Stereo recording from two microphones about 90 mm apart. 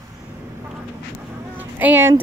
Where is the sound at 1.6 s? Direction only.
20° right (ahead or behind).